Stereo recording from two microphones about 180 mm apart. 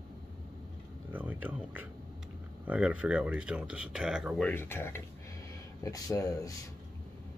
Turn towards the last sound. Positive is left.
turn(degrees=20)  # may be behind; listen again after turning